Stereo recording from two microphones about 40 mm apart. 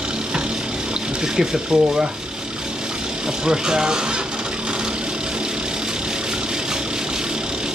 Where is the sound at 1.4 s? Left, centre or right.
Centre.